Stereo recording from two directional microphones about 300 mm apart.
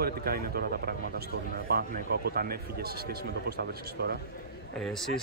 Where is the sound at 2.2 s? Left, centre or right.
Right.